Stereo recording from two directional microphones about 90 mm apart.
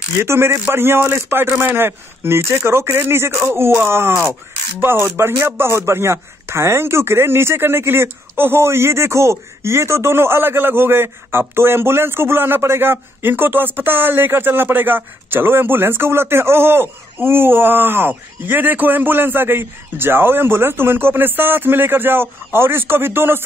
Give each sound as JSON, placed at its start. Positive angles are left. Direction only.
{"t": 0.2, "sound": "speech", "side_deg": -30}